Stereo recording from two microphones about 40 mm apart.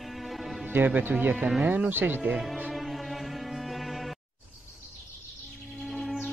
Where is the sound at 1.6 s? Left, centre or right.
Right.